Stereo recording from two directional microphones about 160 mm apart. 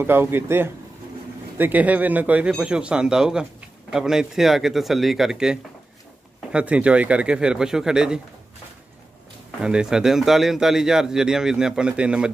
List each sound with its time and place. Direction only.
0.0 s speech: 15° right (ahead or behind)
9.6 s speech: 5° right (ahead or behind)